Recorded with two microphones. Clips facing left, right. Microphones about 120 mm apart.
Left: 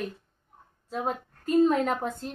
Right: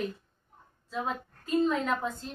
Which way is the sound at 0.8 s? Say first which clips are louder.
Left 3 dB; 50° left (ahead or behind).